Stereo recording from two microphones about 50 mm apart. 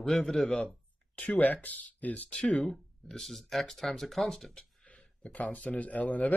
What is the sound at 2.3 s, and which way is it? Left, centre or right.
Speech, centre.